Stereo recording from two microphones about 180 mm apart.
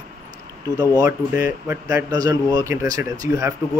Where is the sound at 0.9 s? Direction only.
20° right (ahead or behind).